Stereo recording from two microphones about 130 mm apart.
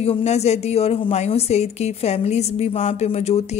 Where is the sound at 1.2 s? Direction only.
60° left (ahead or behind).